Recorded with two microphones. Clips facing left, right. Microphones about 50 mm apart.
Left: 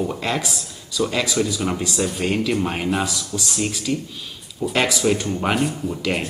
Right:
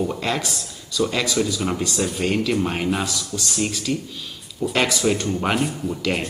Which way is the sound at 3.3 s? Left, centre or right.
Centre.